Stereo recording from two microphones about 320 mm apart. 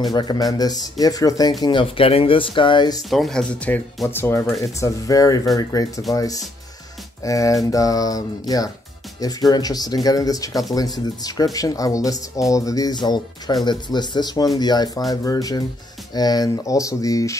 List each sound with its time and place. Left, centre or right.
0.1 s speech: centre
3.1 s speech: centre